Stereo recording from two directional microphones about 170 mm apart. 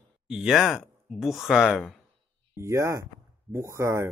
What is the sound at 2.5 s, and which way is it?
Speech, 15° right (ahead or behind).